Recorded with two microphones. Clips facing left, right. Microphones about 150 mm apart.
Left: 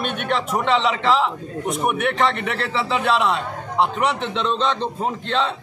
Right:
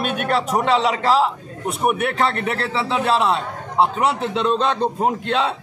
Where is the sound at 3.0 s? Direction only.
35° right (ahead or behind).